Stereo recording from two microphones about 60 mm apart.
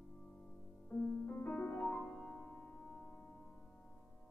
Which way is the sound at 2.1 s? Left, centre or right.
Centre.